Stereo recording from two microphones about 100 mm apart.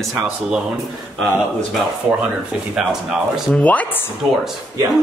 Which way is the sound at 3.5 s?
15° left (ahead or behind).